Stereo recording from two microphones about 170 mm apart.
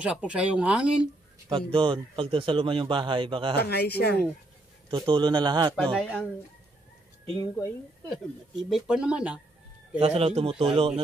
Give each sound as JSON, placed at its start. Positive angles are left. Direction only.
{"t": 0.0, "sound": "speech", "side_deg": -5}
{"t": 1.5, "sound": "a man's voice", "side_deg": -30}
{"t": 3.5, "sound": "speech", "side_deg": 70}
{"t": 4.8, "sound": "a man's voice", "side_deg": -25}
{"t": 5.8, "sound": "speech", "side_deg": 5}
{"t": 8.5, "sound": "speech", "side_deg": 0}
{"t": 9.9, "sound": "speech", "side_deg": -35}